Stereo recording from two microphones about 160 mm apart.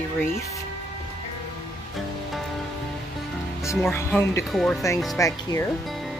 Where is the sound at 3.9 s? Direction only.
15° left (ahead or behind).